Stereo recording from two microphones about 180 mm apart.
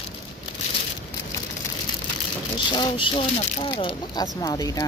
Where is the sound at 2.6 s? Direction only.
25° left (ahead or behind).